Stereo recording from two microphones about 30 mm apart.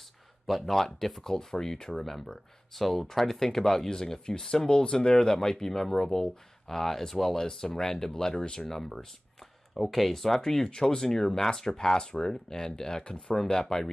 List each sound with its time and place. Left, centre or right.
0.5 s speech: centre
4.6 s speech: left; by 7.4 s centre
7.4 s speech: centre
8.7 s speech: centre